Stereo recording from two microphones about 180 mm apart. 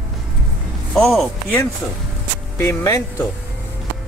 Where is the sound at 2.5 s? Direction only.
15° left (ahead or behind).